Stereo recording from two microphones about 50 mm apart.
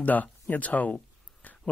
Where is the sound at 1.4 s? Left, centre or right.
Left.